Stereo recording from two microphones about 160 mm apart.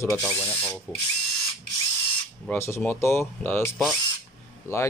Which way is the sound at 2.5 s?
15° left (ahead or behind).